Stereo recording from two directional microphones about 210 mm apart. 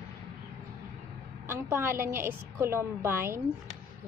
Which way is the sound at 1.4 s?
10° right (ahead or behind).